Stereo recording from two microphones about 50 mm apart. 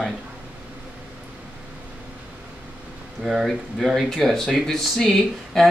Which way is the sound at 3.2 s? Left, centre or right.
Centre.